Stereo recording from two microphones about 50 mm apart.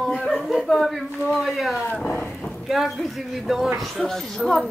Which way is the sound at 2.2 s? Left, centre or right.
Centre.